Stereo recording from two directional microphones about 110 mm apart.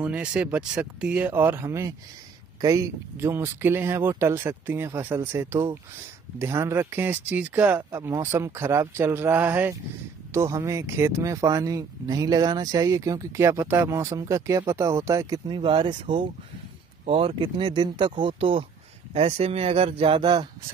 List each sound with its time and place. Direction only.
0.0 s speech: 10° right (ahead or behind)
7.9 s speech: 25° right (ahead or behind)
10.3 s speech: 30° right (ahead or behind)
15.4 s speech: 45° right (ahead or behind)
17.0 s speech: 60° right (ahead or behind)
19.1 s speech: 65° right (ahead or behind); by 20.4 s 45° right (ahead or behind)